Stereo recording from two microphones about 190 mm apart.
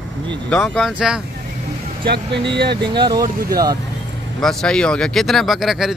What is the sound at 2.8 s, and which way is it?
Speech, 25° right (ahead or behind).